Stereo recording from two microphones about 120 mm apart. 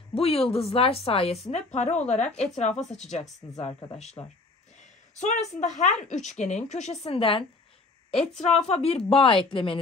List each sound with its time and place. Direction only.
0.1 s speech: 55° left (ahead or behind)
1.7 s a woman's voice: 75° left (ahead or behind)
3.5 s speech: 60° left (ahead or behind)
5.2 s a woman's voice: 75° left (ahead or behind); by 7.4 s 50° left (ahead or behind)
8.5 s a woman's voice: 65° left (ahead or behind); by 9.8 s 45° left (ahead or behind)